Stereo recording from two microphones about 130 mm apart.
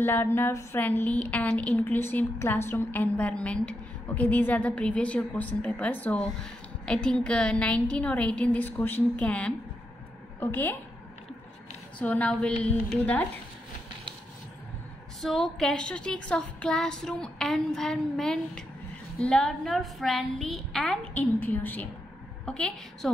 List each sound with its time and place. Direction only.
0.0 s a woman's voice: 15° left (ahead or behind)
12.0 s a woman's voice: 10° left (ahead or behind)
15.2 s a woman's voice: centre (ahead or behind)